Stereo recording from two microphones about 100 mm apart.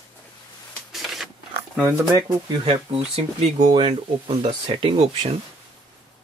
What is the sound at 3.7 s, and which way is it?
Speech, 60° right (ahead or behind).